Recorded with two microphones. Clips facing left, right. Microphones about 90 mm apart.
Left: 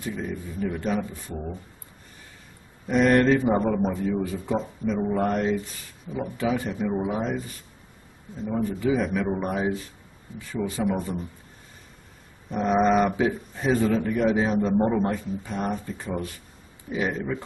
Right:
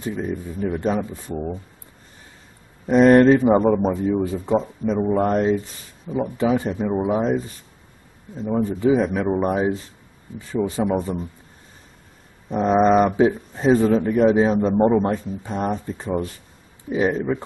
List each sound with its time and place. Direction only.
0.0 s speech: 25° right (ahead or behind)
2.9 s speech: 30° right (ahead or behind)
8.6 s speech: 25° right (ahead or behind)
12.4 s speech: 25° right (ahead or behind)